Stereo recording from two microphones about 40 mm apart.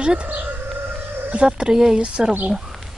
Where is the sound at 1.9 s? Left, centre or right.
Right.